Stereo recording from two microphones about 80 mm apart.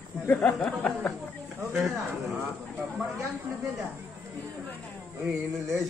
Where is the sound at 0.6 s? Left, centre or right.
Centre.